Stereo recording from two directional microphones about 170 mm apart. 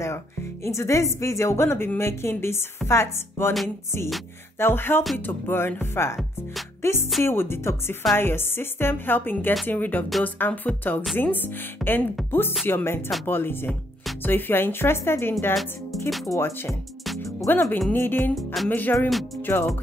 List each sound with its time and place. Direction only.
0.7 s a woman's voice: 15° left (ahead or behind)
4.6 s a woman's voice: 15° left (ahead or behind)
6.8 s music: 15° left (ahead or behind)
7.2 s a woman's voice: 15° left (ahead or behind)
16.3 s a woman's voice: 15° left (ahead or behind)
18.3 s speech: centre (ahead or behind)
18.7 s a woman's voice: 10° left (ahead or behind)
19.0 s speech: centre (ahead or behind)
19.4 s music: 15° left (ahead or behind)